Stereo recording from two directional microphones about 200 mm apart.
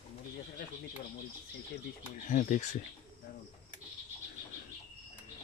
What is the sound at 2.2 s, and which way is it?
Speech, 40° left (ahead or behind).